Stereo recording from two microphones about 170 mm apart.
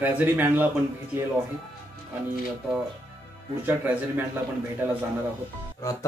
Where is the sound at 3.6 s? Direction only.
10° right (ahead or behind).